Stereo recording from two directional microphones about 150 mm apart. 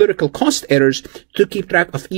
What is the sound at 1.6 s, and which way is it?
Speech, 45° right (ahead or behind).